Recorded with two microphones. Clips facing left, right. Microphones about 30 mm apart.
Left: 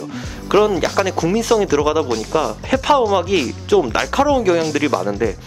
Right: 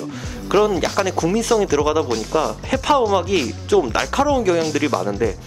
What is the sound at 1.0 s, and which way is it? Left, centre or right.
Speech, centre.